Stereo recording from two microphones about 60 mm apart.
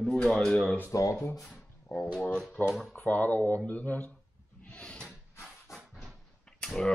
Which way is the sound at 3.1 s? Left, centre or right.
Left.